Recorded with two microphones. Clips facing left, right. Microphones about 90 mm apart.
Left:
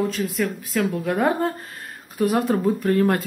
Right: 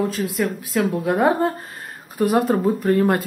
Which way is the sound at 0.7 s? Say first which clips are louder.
Right 2 dB; 15° right (ahead or behind).